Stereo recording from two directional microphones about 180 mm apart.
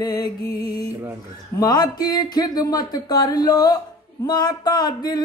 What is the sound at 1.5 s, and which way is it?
Music, 20° left (ahead or behind).